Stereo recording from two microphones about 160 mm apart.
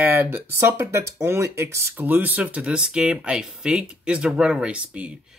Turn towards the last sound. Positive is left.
turn(degrees=-5)  # may be behind; listen again after turning